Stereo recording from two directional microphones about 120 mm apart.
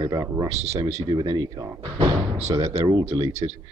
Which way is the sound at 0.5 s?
65° right (ahead or behind).